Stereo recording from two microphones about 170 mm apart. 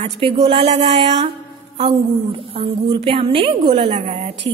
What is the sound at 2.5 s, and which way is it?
A woman's voice, 35° right (ahead or behind).